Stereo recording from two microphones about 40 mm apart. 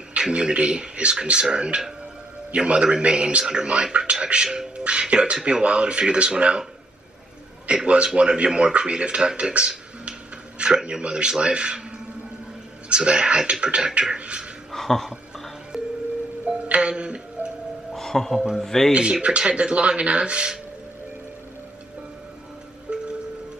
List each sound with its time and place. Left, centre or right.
0.1 s a man's voice: right
7.7 s a man's voice: right
12.9 s a man's voice: right
14.7 s a sound: centre
16.4 s music: right
16.9 s music: right
17.9 s music: centre
18.6 s speech: centre
18.9 s a man's voice: right
22.9 s music: right